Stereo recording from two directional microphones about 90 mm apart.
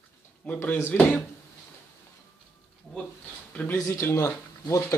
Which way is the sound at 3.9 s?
30° left (ahead or behind).